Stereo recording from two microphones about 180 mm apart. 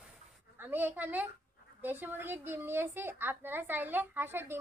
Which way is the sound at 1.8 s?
10° right (ahead or behind).